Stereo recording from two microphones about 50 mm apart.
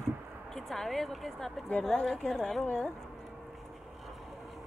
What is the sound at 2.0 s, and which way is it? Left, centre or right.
Speech, centre.